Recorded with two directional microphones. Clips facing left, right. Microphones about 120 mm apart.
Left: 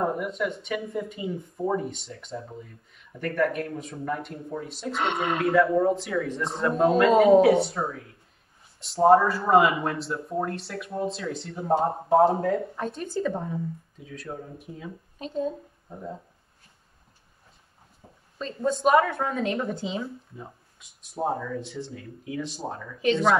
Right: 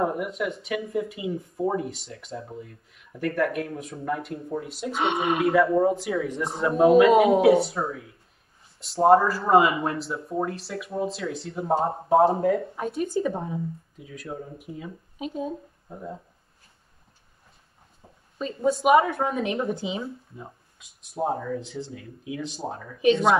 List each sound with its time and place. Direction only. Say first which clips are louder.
0.0 s a woman's voice: right 1 dB; 5° right (ahead or behind)
13.5 s speech: right 1 dB; 5° right (ahead or behind)
18.0 s a sound: left 1 dB; 20° right (ahead or behind)
18.4 s a woman's voice: right 1 dB; 10° right (ahead or behind)
18.9 s speech: right 1 dB; 25° right (ahead or behind)
19.3 s speech: right 1 dB; centre (ahead or behind)
21.7 s speech: right 1 dB; 20° right (ahead or behind)